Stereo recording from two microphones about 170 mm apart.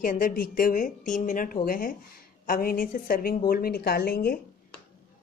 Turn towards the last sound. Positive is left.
turn(degrees=60)  # may be behind; listen again after turning